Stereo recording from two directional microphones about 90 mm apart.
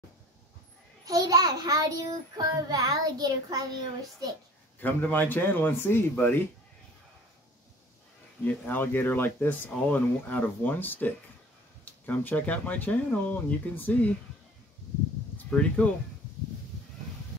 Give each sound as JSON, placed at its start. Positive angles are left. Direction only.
{"t": 1.0, "sound": "child singing", "side_deg": -40}
{"t": 4.7, "sound": "speech", "side_deg": 20}
{"t": 8.5, "sound": "speech", "side_deg": 20}
{"t": 12.1, "sound": "speech", "side_deg": 15}
{"t": 15.3, "sound": "speech", "side_deg": 15}